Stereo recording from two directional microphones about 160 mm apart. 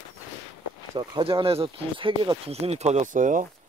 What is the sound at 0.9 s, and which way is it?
Speech, 35° right (ahead or behind).